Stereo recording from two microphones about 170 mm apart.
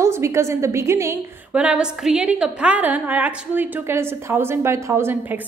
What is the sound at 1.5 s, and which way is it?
A woman's voice, 5° right (ahead or behind).